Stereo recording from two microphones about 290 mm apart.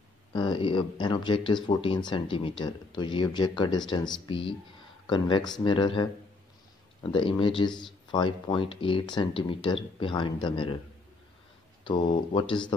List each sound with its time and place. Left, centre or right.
0.3 s speech: centre
11.8 s speech: centre